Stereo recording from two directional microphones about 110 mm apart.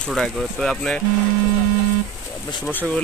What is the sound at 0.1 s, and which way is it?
Speech, 5° left (ahead or behind).